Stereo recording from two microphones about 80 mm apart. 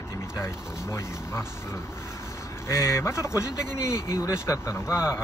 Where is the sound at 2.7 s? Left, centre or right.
Left.